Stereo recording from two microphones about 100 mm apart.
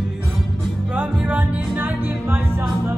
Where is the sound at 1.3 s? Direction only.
15° right (ahead or behind).